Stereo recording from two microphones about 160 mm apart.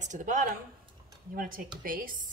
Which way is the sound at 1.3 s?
60° right (ahead or behind).